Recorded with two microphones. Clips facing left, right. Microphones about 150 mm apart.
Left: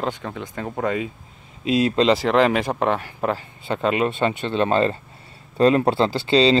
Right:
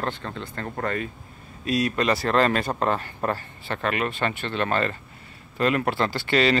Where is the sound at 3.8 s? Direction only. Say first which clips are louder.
Left 5 dB; 20° left (ahead or behind).